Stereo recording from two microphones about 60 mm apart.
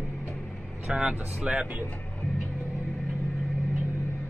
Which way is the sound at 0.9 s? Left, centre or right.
Centre.